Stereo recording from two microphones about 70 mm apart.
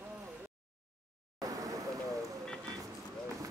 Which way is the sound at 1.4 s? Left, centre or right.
Right.